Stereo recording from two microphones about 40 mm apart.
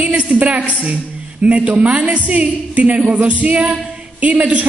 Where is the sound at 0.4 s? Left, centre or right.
Right.